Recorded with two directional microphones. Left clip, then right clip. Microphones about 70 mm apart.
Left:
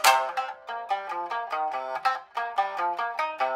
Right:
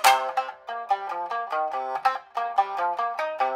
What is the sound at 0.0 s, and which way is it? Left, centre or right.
Music, right.